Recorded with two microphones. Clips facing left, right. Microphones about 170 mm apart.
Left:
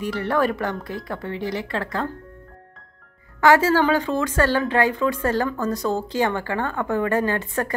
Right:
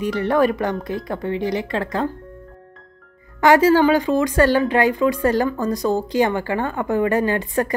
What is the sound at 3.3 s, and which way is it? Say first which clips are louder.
Speech: right 3 dB; 20° right (ahead or behind).